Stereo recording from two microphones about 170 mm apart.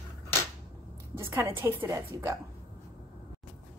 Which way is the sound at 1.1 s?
20° right (ahead or behind).